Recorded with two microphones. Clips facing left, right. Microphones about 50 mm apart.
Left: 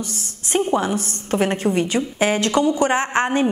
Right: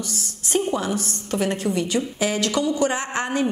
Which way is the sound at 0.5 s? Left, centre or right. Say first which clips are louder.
Left 3 dB; left.